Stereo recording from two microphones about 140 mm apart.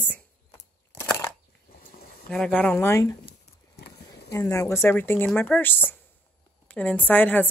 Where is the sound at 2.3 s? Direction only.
10° left (ahead or behind).